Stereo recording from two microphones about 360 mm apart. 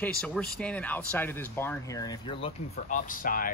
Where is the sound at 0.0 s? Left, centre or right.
Centre.